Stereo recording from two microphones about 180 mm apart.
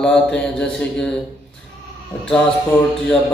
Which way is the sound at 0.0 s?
5° left (ahead or behind).